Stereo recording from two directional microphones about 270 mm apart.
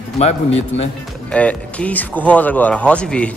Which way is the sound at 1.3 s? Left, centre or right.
Centre.